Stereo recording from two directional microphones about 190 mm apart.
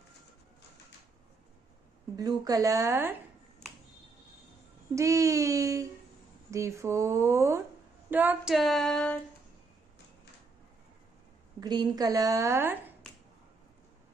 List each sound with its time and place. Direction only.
2.1 s a woman's voice: 20° right (ahead or behind)
4.9 s a woman's voice: 15° right (ahead or behind)
8.1 s female singing: 10° right (ahead or behind)
11.6 s a woman's voice: 20° right (ahead or behind)